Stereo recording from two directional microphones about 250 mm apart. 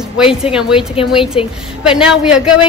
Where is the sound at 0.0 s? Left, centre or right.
Centre.